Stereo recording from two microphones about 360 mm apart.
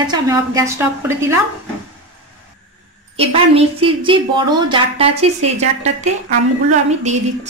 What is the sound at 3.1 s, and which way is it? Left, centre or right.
A woman's voice, centre.